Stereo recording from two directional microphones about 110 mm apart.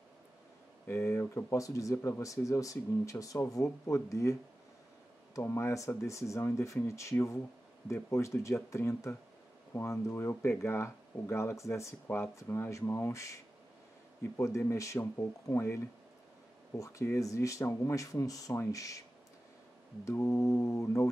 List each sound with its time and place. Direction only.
0.8 s speech: 20° left (ahead or behind)
20.1 s speech: 25° left (ahead or behind)